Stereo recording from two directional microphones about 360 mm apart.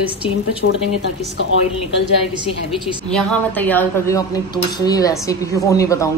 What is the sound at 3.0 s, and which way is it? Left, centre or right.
A woman's voice, centre.